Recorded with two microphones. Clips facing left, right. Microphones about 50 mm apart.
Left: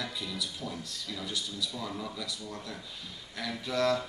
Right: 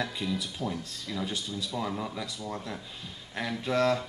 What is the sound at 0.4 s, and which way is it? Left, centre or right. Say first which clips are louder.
Speech: right 4 dB; right.